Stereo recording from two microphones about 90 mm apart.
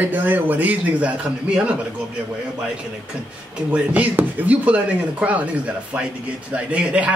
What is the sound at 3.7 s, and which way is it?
Speech, 15° right (ahead or behind).